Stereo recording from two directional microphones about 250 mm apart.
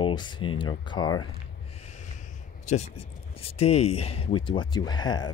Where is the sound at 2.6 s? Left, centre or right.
Left.